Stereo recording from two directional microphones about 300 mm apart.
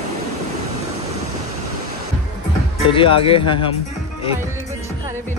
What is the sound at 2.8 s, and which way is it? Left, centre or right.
Speech, centre.